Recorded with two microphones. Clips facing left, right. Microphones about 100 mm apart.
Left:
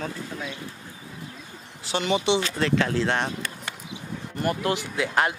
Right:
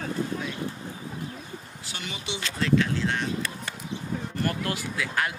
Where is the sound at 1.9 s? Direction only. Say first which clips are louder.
Left 13 dB; 90° left.